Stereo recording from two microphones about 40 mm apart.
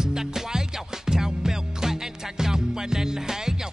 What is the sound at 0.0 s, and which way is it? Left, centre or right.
Music, centre.